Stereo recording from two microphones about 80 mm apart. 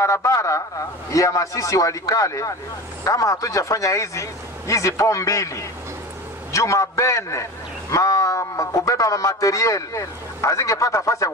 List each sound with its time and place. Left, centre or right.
0.0 s a man's voice: left